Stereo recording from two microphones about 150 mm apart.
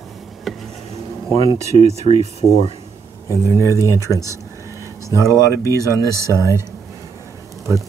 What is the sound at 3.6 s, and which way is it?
Speech, 20° right (ahead or behind).